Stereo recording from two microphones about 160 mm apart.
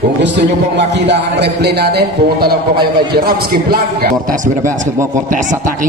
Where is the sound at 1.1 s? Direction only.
90° right.